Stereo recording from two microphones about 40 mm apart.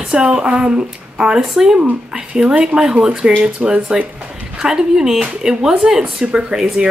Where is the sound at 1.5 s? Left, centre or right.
Centre.